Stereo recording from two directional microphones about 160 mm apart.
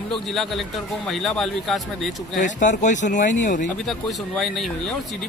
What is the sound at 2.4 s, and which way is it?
Speech, 50° left (ahead or behind).